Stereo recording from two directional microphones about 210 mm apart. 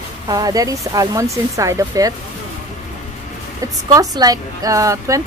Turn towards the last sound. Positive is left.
turn(degrees=-15)  # may be behind; listen again after turning